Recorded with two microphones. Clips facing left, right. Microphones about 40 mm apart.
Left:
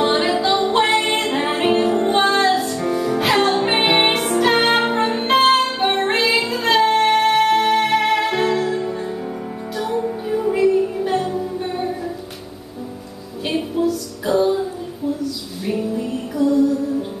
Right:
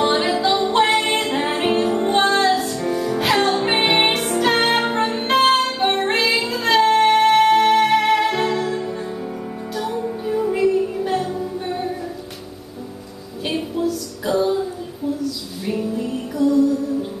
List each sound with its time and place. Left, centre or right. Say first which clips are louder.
0.0 s music: left 1 dB; centre
13.5 s music: left 2 dB; centre
15.6 s music: left 1 dB; centre